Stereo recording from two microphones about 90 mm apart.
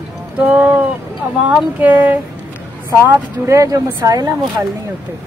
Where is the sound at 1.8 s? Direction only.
20° right (ahead or behind).